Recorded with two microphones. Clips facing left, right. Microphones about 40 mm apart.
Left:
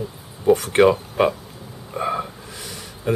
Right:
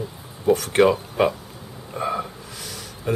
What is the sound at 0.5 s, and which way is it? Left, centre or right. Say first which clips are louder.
Speech: left 3 dB; left.